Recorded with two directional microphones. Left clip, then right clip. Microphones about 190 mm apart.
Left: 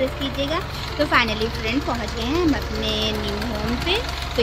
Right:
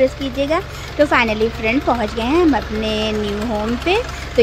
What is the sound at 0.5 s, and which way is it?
Speech, 30° right (ahead or behind).